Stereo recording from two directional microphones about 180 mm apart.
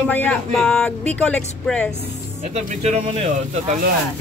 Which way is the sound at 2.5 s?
40° right (ahead or behind).